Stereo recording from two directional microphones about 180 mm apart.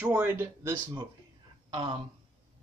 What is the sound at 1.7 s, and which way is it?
Speech, 25° right (ahead or behind).